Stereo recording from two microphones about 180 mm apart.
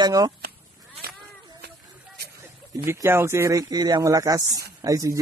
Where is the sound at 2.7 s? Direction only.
15° right (ahead or behind).